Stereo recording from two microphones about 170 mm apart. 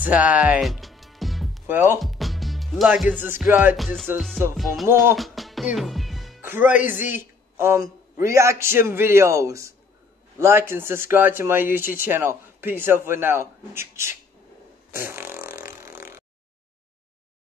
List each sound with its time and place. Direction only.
0.0 s music: 10° right (ahead or behind)
2.0 s speech: centre (ahead or behind)
3.7 s music: centre (ahead or behind)
6.4 s speech: 10° right (ahead or behind)
14.9 s fart: 15° right (ahead or behind)
15.8 s a sound: 15° right (ahead or behind)